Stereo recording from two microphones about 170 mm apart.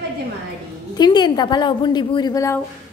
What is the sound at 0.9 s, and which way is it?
A woman's voice, 25° left (ahead or behind).